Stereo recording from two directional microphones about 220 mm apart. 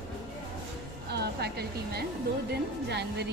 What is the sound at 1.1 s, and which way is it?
A woman's voice, 45° right (ahead or behind).